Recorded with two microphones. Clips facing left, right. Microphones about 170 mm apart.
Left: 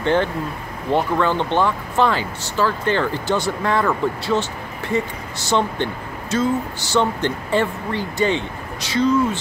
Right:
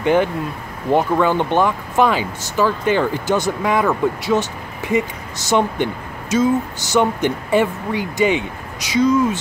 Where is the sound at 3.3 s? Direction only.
45° right (ahead or behind).